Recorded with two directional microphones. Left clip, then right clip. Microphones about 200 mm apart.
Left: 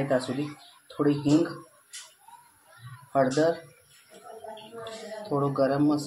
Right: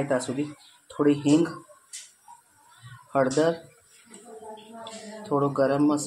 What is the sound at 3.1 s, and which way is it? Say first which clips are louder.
Speech: right 1 dB; 20° right (ahead or behind).